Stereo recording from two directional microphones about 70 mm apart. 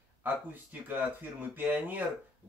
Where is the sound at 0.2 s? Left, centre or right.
Right.